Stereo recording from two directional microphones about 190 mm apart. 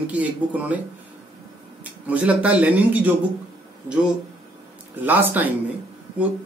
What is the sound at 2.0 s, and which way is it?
Speech, 10° right (ahead or behind).